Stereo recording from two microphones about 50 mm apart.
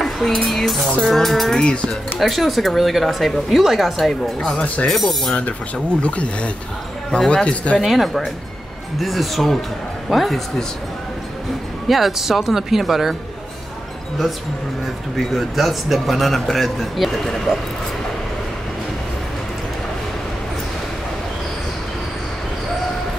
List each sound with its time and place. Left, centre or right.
0.0 s a sound: centre
0.5 s a man's voice: centre
1.6 s speech: centre
2.1 s a man's voice: centre
6.0 s speech: left
7.1 s speech: centre
7.8 s a man's voice: centre
11.9 s a man's voice: centre
15.1 s a man's voice: centre